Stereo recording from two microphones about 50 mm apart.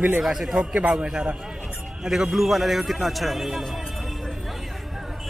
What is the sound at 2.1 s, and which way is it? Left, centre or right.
Speech, centre.